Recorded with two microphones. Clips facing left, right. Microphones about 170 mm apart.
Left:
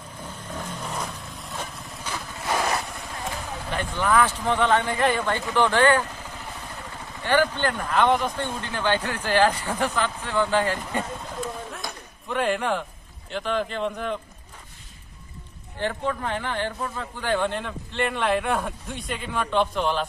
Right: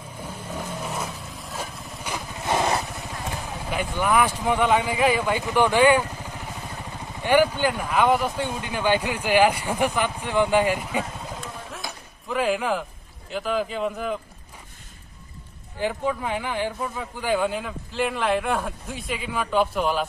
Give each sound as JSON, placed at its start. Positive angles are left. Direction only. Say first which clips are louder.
{"t": 0.2, "sound": "vehicle", "louder": "right 2 dB", "side_deg": -10}
{"t": 2.0, "sound": "vehicle", "louder": "right 2 dB", "side_deg": -20}
{"t": 3.7, "sound": "speech", "louder": "even", "side_deg": -10}
{"t": 15.8, "sound": "speech", "louder": "right 2 dB", "side_deg": -10}